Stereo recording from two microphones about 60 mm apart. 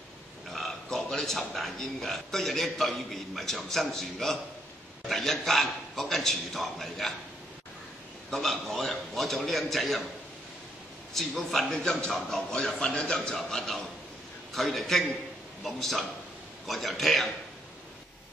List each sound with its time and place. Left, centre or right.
0.5 s a man's voice: centre
8.3 s a man's voice: centre
11.1 s a man's voice: centre